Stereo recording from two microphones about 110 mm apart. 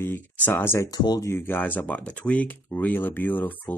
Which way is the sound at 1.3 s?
20° left (ahead or behind).